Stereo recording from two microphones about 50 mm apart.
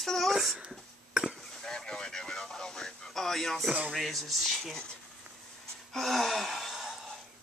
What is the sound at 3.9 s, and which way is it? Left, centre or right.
Speech, centre.